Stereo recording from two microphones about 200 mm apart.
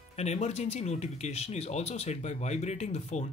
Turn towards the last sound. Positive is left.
turn(degrees=35)  # may be behind; listen again after turning